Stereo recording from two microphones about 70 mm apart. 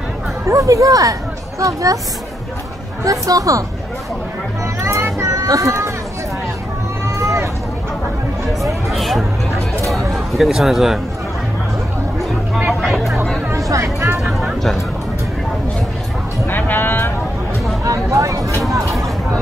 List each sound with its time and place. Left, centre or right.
0.5 s speech: right
3.0 s speech: right
4.8 s a sound: right
7.1 s run: right
8.9 s hubbub: centre
10.1 s speech: centre
13.5 s a sound: right
16.4 s music: left
17.8 s a sound: right